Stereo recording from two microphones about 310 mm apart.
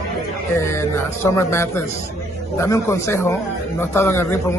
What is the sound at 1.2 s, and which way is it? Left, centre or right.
A man's voice, centre.